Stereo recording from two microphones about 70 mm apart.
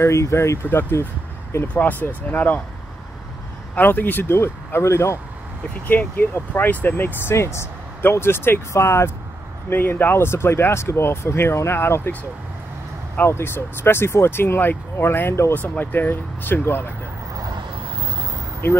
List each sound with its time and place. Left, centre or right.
0.0 s speech: left
3.7 s speech: left
5.9 s speech: left
7.2 s speech: left
13.2 s speech: left
15.7 s speech: left